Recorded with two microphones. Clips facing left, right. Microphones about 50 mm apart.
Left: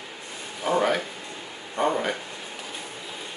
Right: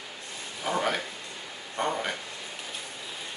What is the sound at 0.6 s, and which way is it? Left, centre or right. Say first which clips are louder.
Speech: left 5 dB; centre.